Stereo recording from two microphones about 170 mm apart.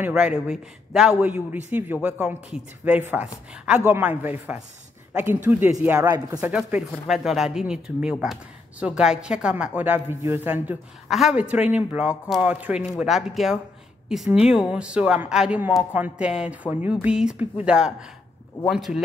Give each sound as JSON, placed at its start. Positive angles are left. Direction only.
{"t": 0.0, "sound": "speech", "side_deg": -5}
{"t": 6.0, "sound": "speech", "side_deg": -20}
{"t": 6.4, "sound": "speech", "side_deg": -10}